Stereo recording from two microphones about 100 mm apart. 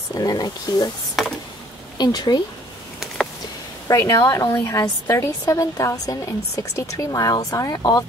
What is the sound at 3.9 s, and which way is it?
A woman's voice, 30° left (ahead or behind).